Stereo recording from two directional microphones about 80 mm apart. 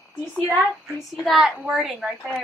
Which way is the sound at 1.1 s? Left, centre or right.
Centre.